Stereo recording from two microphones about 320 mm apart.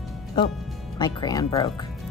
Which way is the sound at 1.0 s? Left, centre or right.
Centre.